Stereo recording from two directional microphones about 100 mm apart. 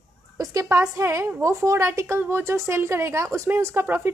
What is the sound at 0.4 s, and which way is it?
A woman's voice, 35° right (ahead or behind).